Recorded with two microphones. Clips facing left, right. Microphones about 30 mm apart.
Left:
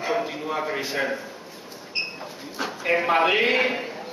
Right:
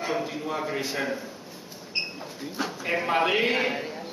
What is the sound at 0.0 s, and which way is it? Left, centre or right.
A man's voice, centre.